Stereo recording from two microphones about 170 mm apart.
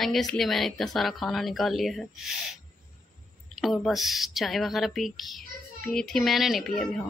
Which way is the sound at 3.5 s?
Centre (ahead or behind).